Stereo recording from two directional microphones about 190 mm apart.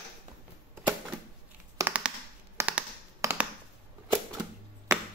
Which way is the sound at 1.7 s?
10° right (ahead or behind).